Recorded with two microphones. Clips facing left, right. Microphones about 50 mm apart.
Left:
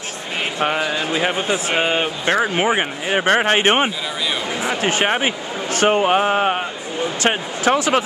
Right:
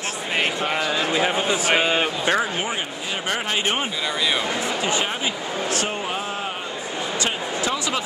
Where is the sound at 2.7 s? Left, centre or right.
Left.